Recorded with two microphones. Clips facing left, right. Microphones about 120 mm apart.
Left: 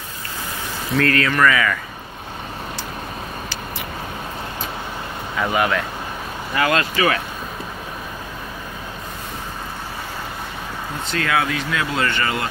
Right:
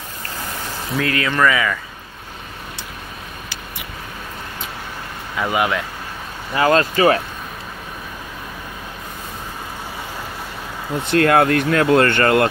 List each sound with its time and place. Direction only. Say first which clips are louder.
0.9 s speech: left 2 dB; 15° right (ahead or behind)
5.5 s speech: even; 20° right (ahead or behind)
6.5 s speech: right 4 dB; 35° right (ahead or behind)
11.1 s speech: right 8 dB; 55° right (ahead or behind)